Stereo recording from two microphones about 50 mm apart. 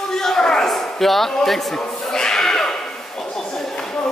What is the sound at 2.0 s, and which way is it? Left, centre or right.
Neigh, centre.